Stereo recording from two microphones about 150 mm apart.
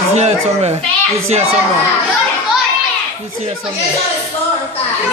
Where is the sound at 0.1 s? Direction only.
45° right (ahead or behind).